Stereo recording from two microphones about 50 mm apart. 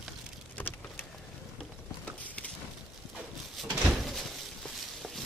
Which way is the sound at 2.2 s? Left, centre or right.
Left.